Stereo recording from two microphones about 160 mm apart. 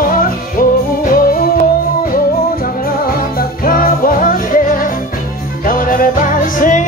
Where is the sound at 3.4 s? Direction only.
65° left (ahead or behind).